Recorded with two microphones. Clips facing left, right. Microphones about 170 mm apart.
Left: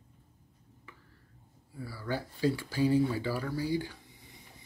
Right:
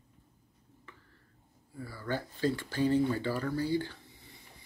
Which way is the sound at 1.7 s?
10° left (ahead or behind).